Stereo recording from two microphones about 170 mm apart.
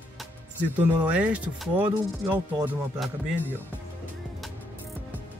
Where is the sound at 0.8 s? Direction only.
10° right (ahead or behind).